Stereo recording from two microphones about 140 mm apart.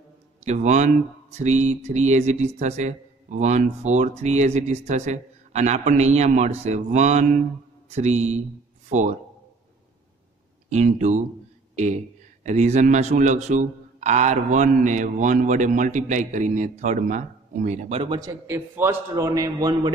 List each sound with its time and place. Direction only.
0.5 s speech: 55° right (ahead or behind)
10.7 s speech: 55° right (ahead or behind)
18.1 s a man's voice: 25° right (ahead or behind)
18.5 s a man's voice: 15° right (ahead or behind)